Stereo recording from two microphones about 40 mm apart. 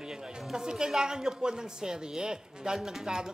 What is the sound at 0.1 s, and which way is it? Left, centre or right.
A woman's voice, centre.